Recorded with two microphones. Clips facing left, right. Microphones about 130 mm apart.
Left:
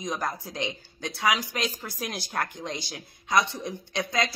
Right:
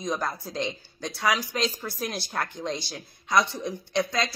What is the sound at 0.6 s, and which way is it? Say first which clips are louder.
Speech: right 2 dB; 20° left (ahead or behind).